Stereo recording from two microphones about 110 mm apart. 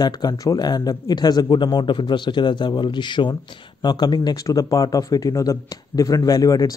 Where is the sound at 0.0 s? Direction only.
40° left (ahead or behind).